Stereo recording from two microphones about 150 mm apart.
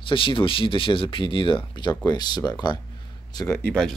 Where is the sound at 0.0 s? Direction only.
35° left (ahead or behind).